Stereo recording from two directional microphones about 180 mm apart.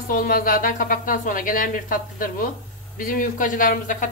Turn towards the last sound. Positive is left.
turn(degrees=45)  # may be behind; listen again after turning